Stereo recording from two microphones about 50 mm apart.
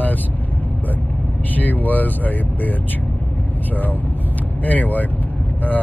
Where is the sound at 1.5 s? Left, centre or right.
Left.